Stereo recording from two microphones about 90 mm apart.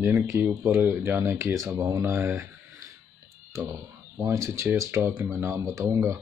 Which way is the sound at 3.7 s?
30° right (ahead or behind).